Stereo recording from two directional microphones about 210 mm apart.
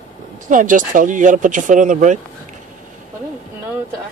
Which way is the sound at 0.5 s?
40° right (ahead or behind).